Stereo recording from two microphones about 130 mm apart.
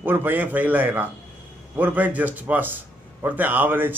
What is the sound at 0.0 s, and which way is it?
Speech, 15° right (ahead or behind).